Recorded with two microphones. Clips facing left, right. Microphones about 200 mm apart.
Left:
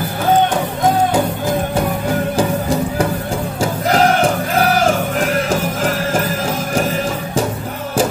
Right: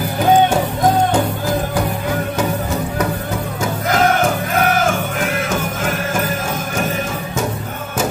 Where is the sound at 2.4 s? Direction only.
30° left (ahead or behind).